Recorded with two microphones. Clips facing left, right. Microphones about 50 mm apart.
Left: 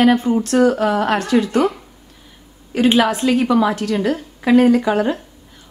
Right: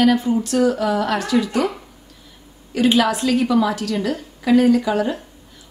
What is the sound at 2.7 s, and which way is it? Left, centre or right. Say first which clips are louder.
A woman's voice: left 2 dB; left.